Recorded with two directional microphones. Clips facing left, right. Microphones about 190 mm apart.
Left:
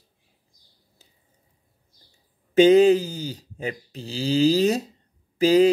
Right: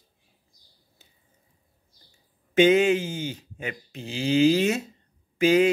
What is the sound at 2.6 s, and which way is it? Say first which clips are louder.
Speech: left 4 dB; 35° left (ahead or behind).